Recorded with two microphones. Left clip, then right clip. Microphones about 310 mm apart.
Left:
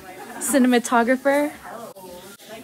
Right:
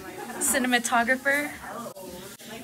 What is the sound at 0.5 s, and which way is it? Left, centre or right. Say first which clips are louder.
A woman's voice: left 6 dB; left.